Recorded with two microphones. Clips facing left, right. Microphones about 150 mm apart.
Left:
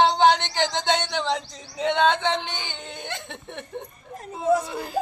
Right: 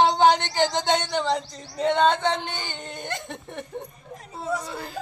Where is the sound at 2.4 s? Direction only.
45° right (ahead or behind).